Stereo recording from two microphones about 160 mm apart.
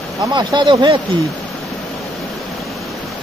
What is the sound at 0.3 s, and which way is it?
Speech, 25° right (ahead or behind).